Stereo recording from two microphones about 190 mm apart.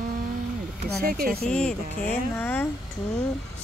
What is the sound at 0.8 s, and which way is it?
Speech, 50° right (ahead or behind).